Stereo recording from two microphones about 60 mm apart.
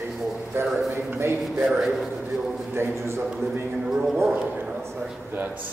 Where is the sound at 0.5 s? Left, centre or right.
Right.